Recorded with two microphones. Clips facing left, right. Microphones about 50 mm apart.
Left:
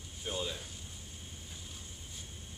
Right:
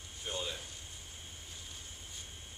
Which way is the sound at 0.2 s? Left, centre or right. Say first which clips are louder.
Left 2 dB; centre.